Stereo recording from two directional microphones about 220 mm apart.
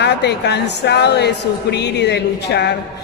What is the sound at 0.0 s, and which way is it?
A woman's voice, 50° left (ahead or behind).